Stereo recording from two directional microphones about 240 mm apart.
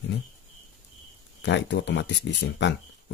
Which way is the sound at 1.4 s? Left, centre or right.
Left.